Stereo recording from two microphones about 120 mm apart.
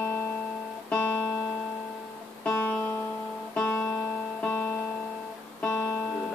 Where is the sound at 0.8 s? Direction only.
10° left (ahead or behind).